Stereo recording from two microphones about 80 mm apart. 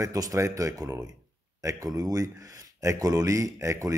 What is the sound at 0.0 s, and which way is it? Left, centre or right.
Speech, right.